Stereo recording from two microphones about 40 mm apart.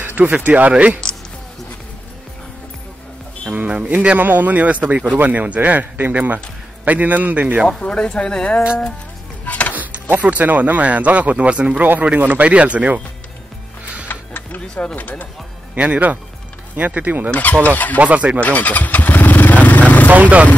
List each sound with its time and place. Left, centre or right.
0.0 s a sound: right
0.4 s speech: right
3.5 s speech: right
4.2 s speech: right
7.8 s speech: left
9.5 s chopping: left
9.8 s speech: right
14.0 s music: left
15.0 s speech: left
15.7 s speech: right
17.6 s speech: left
17.9 s speech: right
18.4 s vehicle: left
20.1 s speech: right